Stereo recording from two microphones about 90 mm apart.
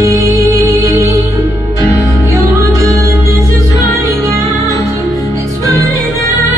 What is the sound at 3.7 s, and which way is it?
Music, 40° left (ahead or behind).